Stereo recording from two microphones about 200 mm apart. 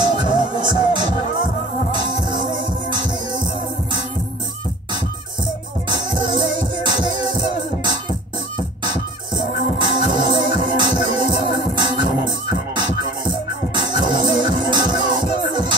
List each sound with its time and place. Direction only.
0.0 s music: 20° right (ahead or behind)
5.9 s music: 20° right (ahead or behind)